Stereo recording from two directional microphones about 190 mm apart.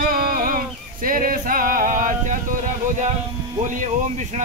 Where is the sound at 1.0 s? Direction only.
45° right (ahead or behind).